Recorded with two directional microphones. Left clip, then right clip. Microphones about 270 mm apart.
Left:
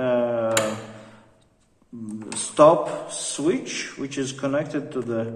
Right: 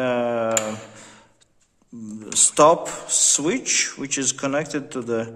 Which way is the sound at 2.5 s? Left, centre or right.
Right.